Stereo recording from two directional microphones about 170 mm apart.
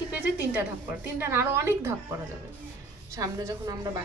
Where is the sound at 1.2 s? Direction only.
15° right (ahead or behind).